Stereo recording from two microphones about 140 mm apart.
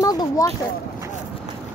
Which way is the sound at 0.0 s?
25° left (ahead or behind).